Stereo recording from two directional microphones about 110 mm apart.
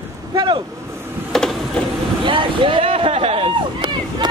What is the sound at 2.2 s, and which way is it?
Vehicle, 50° right (ahead or behind).